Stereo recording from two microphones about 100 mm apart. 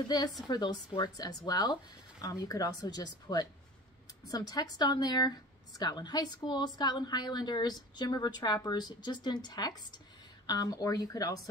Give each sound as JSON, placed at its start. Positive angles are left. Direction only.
{"t": 0.5, "sound": "speech", "side_deg": 45}